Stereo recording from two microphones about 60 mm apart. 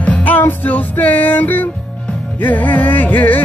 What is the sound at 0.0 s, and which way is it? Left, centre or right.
Music, left.